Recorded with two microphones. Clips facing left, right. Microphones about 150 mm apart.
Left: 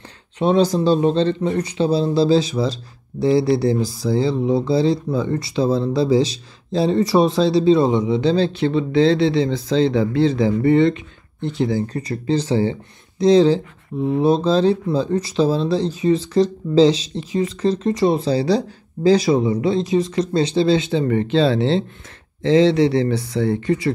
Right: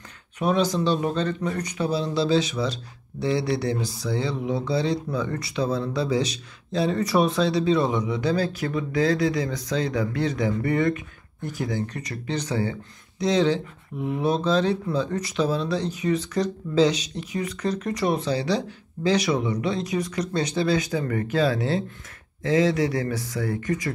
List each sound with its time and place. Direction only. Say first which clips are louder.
0.4 s speech: left 6 dB; 30° left (ahead or behind)